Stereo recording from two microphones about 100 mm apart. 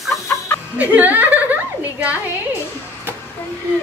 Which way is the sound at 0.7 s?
15° right (ahead or behind).